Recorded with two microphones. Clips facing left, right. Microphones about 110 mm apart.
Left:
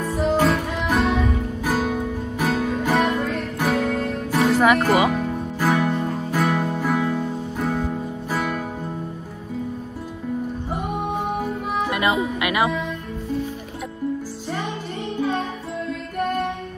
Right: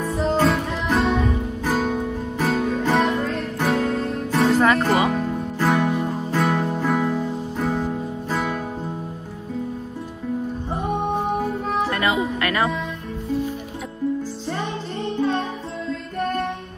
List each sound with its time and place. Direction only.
0.0 s music: centre (ahead or behind)
10.7 s music: centre (ahead or behind)
11.9 s music: 15° left (ahead or behind)
15.1 s music: 5° left (ahead or behind)